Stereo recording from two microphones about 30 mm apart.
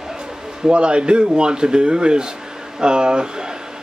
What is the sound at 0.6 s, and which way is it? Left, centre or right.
Speech, right.